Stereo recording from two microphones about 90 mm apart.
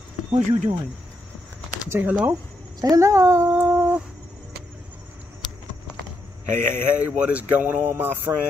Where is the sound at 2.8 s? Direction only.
40° right (ahead or behind).